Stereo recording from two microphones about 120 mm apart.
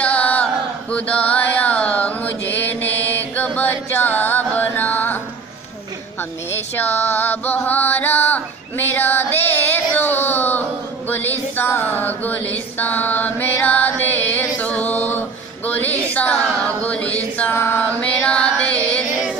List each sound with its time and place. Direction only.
0.0 s music: 10° left (ahead or behind)
6.5 s music: 15° left (ahead or behind)
11.1 s mantra: 15° left (ahead or behind)